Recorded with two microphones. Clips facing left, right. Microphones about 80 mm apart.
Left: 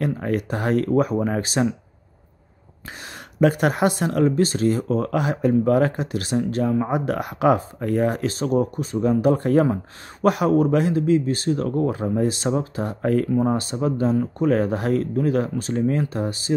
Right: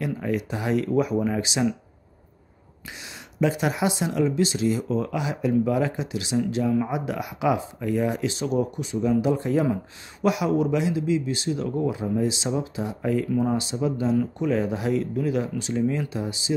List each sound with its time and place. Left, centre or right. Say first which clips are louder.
0.0 s speech: left 3 dB; left
3.3 s speech: left 5 dB; left
13.3 s speech: left 3 dB; left
13.6 s speech: left 3 dB; left